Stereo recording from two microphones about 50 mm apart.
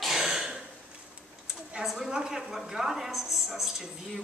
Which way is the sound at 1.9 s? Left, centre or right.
Centre.